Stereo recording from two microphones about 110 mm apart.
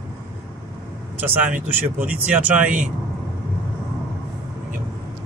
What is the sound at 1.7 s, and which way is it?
A man's voice, 15° right (ahead or behind).